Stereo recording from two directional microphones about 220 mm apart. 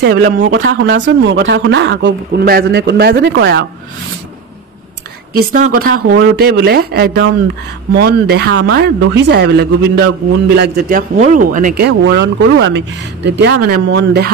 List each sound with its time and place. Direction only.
0.0 s a man's voice: 40° right (ahead or behind)
5.3 s a man's voice: 40° right (ahead or behind)